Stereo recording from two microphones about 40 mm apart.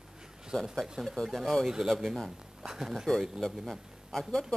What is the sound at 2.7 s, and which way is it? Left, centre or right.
Speech, centre.